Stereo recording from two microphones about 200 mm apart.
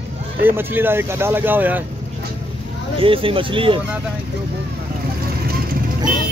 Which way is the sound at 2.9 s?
25° right (ahead or behind).